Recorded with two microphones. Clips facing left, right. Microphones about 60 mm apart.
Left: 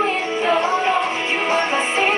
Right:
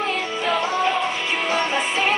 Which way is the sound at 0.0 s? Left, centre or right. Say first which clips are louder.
Left 4 dB; left.